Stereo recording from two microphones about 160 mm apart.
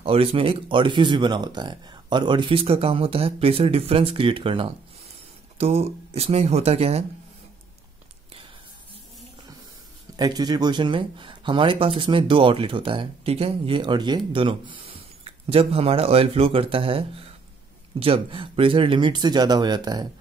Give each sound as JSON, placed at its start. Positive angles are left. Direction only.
{"t": 0.0, "sound": "speech", "side_deg": -35}
{"t": 10.1, "sound": "speech", "side_deg": -25}